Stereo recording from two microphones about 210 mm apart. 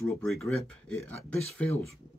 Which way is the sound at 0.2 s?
Centre (ahead or behind).